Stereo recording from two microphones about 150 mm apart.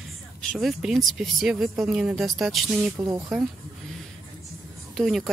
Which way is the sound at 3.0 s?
25° right (ahead or behind).